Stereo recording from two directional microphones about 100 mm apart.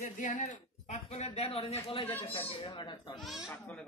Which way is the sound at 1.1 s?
90° left.